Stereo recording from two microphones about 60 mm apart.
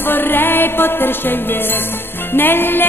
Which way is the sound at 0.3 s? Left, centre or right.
Left.